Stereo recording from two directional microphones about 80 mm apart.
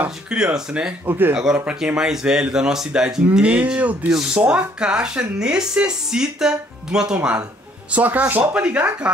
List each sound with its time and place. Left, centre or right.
0.3 s speech: centre
1.0 s speech: right
1.3 s speech: centre
3.3 s speech: centre